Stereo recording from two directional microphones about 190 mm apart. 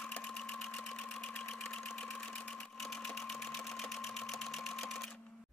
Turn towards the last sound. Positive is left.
turn(degrees=0)  # may be behind; listen again after turning